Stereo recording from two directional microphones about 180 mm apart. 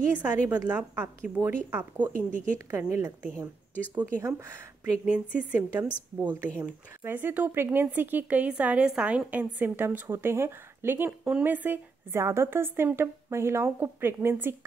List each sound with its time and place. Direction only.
0.1 s speech: 10° right (ahead or behind)
2.1 s a woman's voice: 45° right (ahead or behind)
2.7 s speech: 15° right (ahead or behind)